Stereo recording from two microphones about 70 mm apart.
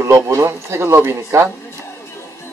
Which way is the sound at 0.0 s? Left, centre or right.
Right.